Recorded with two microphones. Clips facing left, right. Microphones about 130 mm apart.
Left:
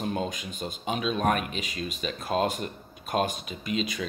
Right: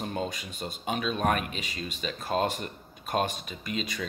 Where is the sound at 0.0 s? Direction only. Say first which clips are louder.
Left 2 dB; 45° left (ahead or behind).